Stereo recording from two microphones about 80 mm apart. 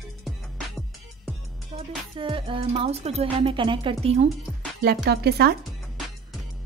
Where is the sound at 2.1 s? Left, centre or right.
Right.